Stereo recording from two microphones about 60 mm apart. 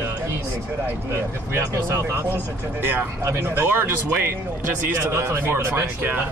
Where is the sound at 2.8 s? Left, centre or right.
Right.